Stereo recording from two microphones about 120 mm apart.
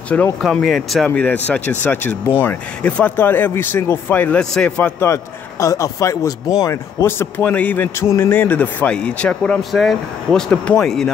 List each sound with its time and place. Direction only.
0.4 s speech: centre (ahead or behind)
1.0 s speech: 10° left (ahead or behind)
5.0 s a man's voice: 25° left (ahead or behind); by 11.1 s 5° left (ahead or behind)